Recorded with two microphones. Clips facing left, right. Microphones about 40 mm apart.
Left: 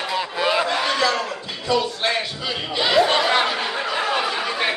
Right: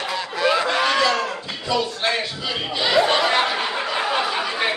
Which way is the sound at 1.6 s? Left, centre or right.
Centre.